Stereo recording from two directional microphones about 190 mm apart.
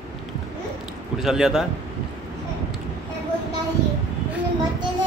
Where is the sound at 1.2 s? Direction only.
Centre (ahead or behind).